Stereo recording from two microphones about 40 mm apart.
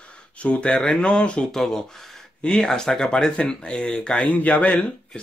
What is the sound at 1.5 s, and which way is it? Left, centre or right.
Speech, centre.